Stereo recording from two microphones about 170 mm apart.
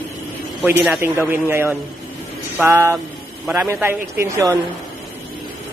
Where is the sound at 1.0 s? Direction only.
15° right (ahead or behind).